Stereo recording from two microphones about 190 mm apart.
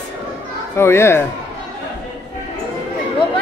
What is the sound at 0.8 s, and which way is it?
Speech, 15° left (ahead or behind).